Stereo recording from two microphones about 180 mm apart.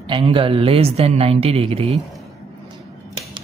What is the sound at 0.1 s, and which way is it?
A woman's voice, 30° right (ahead or behind).